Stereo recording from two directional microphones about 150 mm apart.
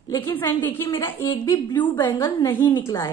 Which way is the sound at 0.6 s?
15° left (ahead or behind).